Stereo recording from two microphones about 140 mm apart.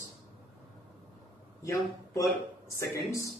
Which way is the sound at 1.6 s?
20° left (ahead or behind).